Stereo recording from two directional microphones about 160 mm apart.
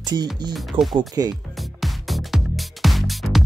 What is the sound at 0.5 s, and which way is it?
Speech, centre (ahead or behind).